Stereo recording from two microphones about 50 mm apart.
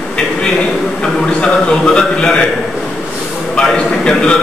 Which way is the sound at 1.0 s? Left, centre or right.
Centre.